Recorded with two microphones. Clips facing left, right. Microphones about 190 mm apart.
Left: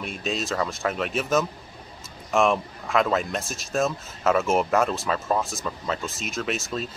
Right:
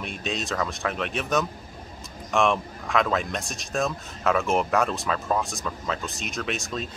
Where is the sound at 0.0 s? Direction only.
Centre (ahead or behind).